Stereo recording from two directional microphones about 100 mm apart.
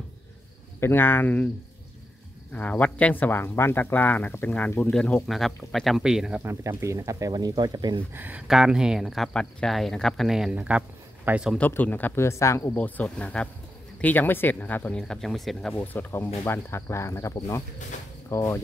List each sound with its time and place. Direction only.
0.7 s speech: 20° left (ahead or behind)
2.5 s speech: 15° left (ahead or behind); by 6.4 s 5° right (ahead or behind)
6.4 s speech: 30° right (ahead or behind)
8.1 s speech: 15° right (ahead or behind)
8.5 s speech: 5° right (ahead or behind)
11.5 s speech: 15° left (ahead or behind)
12.7 s speech: 15° left (ahead or behind)
15.8 s speech: 20° left (ahead or behind)